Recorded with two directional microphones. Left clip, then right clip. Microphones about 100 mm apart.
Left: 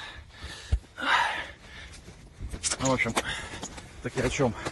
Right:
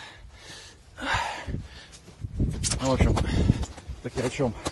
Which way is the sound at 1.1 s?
55° right (ahead or behind).